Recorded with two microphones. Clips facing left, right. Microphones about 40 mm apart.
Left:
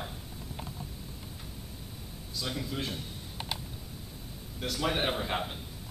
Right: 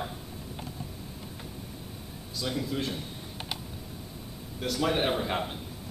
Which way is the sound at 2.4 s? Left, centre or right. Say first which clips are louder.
Right 4 dB; centre.